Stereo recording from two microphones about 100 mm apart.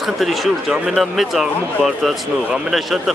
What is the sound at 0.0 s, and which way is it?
Speech, centre (ahead or behind).